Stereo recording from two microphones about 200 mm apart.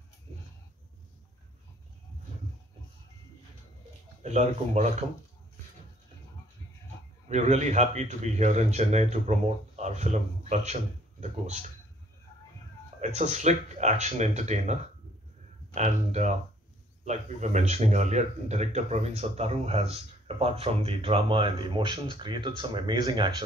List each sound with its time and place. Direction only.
4.2 s speech: 35° right (ahead or behind)
7.2 s speech: 35° right (ahead or behind)
13.0 s speech: 35° right (ahead or behind)